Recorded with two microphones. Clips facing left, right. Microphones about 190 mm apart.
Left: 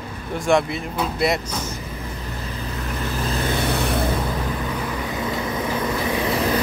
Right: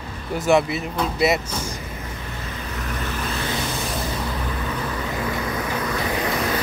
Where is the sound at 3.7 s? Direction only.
60° left (ahead or behind).